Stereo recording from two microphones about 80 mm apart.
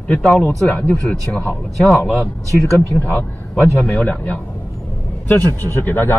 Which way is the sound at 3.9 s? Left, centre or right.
Centre.